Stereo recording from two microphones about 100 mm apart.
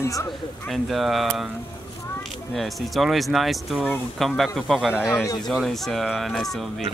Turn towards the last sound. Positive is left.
turn(degrees=0)  # may be behind; listen again after turning